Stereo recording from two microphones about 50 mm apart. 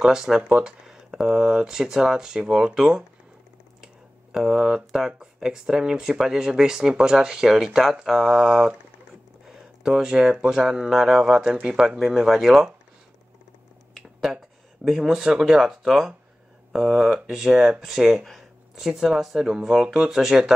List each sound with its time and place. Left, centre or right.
0.0 s speech: centre
12.0 s speech: centre
14.9 s speech: centre